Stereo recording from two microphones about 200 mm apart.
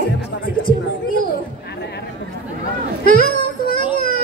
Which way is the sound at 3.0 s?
50° left (ahead or behind).